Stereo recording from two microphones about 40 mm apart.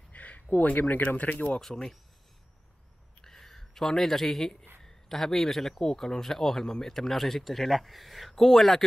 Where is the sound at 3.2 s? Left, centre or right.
Centre.